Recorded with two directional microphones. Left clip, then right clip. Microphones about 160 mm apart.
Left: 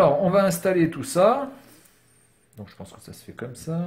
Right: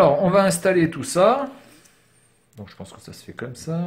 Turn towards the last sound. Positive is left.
turn(degrees=-5)  # may be behind; listen again after turning